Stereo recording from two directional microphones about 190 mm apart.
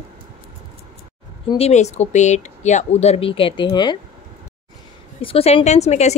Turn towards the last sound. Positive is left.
turn(degrees=35)  # may be behind; listen again after turning